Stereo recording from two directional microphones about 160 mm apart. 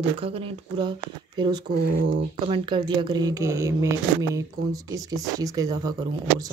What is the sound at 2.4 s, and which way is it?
A woman's voice, 30° right (ahead or behind).